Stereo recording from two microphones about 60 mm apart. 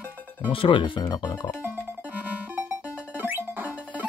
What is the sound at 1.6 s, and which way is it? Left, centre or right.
Music, right.